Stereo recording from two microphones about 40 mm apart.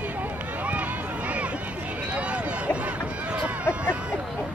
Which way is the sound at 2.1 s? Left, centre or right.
Right.